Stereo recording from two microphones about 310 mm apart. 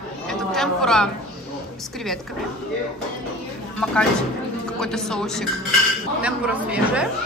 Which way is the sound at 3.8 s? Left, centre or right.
Centre.